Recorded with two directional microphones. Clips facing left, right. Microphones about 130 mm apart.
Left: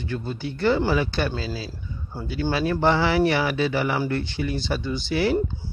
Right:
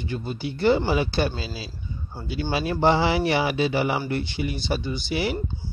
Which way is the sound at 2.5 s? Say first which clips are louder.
Right 1 dB; 20° right (ahead or behind).